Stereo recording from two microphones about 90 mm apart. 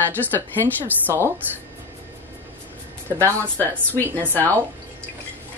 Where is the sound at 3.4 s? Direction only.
20° left (ahead or behind).